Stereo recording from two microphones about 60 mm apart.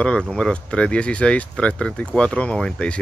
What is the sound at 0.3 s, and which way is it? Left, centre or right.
Speech, centre.